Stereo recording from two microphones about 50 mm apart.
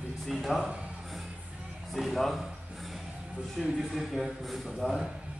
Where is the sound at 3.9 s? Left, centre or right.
Centre.